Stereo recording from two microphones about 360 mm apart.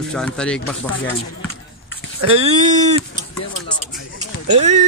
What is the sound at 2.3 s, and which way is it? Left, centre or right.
Speech, centre.